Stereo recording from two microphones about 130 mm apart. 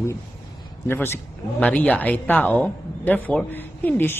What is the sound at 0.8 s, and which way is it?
Speech, 15° left (ahead or behind).